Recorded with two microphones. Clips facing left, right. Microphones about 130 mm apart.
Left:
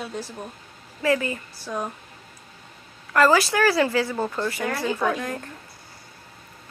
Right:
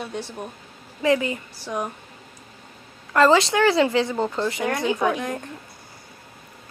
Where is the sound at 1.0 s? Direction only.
20° right (ahead or behind).